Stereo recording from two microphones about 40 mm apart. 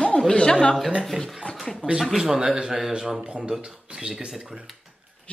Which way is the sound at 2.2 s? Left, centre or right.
Centre.